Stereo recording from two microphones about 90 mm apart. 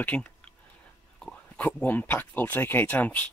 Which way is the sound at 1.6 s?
20° left (ahead or behind).